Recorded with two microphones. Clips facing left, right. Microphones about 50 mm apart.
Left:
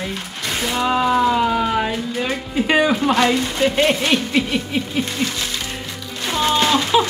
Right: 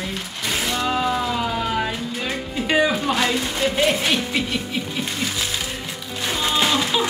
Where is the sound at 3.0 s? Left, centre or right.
Centre.